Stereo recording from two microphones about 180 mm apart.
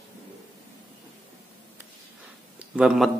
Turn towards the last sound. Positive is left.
turn(degrees=-5)  # may be behind; listen again after turning